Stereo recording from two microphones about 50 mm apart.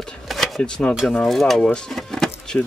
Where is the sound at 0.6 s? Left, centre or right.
Centre.